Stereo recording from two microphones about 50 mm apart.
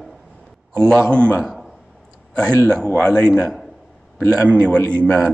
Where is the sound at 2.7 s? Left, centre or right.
Centre.